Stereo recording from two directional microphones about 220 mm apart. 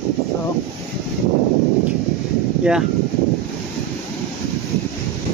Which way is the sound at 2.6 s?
5° right (ahead or behind).